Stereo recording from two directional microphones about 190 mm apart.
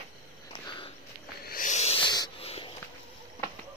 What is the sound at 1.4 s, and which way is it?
Owl, 50° left (ahead or behind).